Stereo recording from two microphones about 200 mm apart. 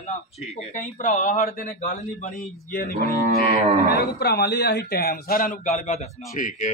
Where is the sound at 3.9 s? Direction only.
50° left (ahead or behind).